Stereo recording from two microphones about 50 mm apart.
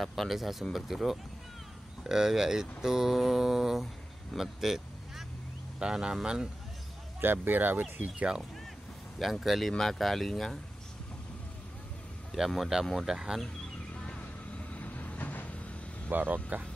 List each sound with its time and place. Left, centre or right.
0.0 s speech: centre
5.8 s speech: centre
7.2 s speech: right
9.2 s speech: centre
12.3 s speech: centre
13.9 s a sound: left
14.7 s vehicle: left
16.1 s speech: right